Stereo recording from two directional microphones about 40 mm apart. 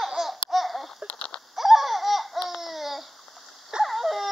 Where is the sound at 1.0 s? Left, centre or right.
Left.